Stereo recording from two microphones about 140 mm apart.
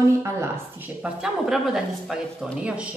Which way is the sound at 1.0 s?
5° right (ahead or behind).